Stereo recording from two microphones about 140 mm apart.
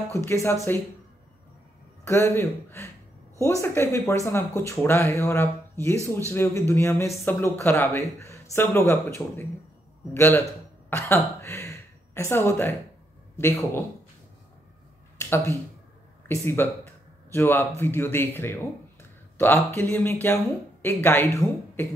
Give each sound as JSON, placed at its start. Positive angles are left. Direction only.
{"t": 0.1, "sound": "speech", "side_deg": 20}
{"t": 2.0, "sound": "speech", "side_deg": 20}
{"t": 10.1, "sound": "speech", "side_deg": 15}
{"t": 11.4, "sound": "a sound", "side_deg": 20}
{"t": 13.4, "sound": "speech", "side_deg": 15}
{"t": 15.1, "sound": "a sound", "side_deg": 15}
{"t": 16.3, "sound": "speech", "side_deg": 15}